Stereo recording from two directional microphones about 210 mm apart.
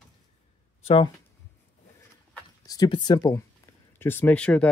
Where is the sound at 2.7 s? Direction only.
20° left (ahead or behind).